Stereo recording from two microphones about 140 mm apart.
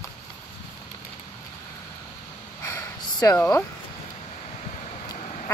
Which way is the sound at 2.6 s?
20° left (ahead or behind).